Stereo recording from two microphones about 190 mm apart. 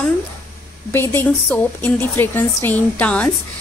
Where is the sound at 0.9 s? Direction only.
10° left (ahead or behind).